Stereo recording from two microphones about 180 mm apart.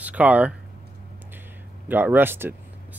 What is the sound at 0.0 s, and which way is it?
Speech, 10° right (ahead or behind).